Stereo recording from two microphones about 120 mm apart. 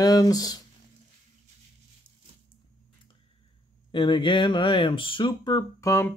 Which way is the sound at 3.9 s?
45° left (ahead or behind).